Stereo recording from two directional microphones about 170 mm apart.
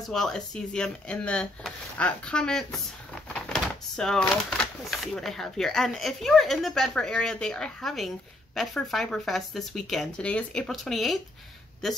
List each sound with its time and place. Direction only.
0.1 s speech: 5° left (ahead or behind)